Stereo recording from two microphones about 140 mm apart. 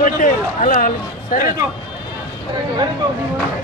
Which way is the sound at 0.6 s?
70° left (ahead or behind).